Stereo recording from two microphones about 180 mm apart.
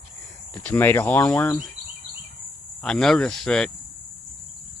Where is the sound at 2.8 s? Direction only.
Centre (ahead or behind).